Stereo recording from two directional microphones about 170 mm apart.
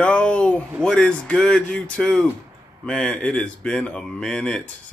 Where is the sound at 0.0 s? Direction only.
5° left (ahead or behind).